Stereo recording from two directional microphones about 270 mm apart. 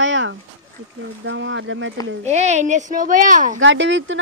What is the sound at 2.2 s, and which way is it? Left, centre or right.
Speech, right.